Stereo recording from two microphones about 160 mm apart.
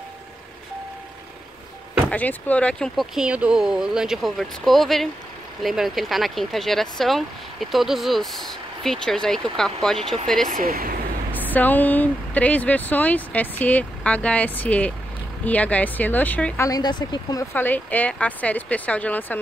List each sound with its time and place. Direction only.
2.0 s speech: 10° left (ahead or behind)
10.5 s speech: 65° right (ahead or behind)
11.3 s speech: 10° left (ahead or behind)
16.6 s speech: 25° left (ahead or behind)
17.6 s speech: 10° left (ahead or behind)